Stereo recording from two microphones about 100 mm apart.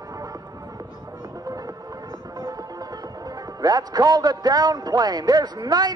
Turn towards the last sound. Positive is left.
turn(degrees=-40)  # may be behind; listen again after turning